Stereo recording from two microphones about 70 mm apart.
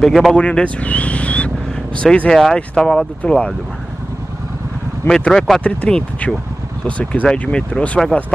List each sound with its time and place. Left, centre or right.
0.0 s speech: centre
0.4 s speech: centre
5.0 s speech: centre
5.6 s speech: centre